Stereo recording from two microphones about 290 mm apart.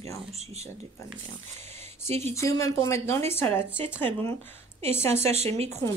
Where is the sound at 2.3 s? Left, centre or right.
Centre.